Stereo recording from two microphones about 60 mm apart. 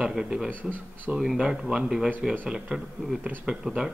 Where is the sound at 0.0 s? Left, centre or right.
Centre.